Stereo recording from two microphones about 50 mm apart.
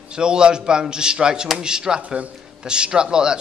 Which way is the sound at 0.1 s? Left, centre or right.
Centre.